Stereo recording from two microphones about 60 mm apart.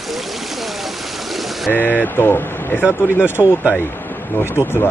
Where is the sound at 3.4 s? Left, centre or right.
Left.